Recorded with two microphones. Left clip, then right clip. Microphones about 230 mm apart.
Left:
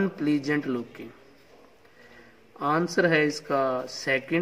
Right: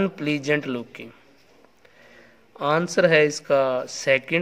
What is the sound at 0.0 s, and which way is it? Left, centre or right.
Speech, right.